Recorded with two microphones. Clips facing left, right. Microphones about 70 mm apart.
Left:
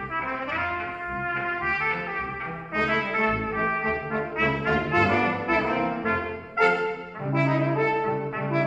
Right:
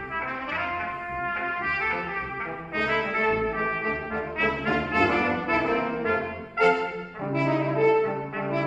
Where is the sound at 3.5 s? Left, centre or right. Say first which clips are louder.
Left 2 dB; centre.